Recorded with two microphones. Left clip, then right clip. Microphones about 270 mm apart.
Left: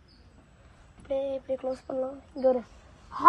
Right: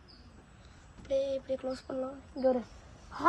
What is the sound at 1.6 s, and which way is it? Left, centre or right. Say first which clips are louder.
Speech: left 5 dB; left.